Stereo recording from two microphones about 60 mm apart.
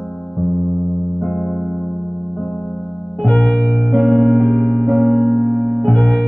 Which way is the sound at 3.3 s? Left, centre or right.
Centre.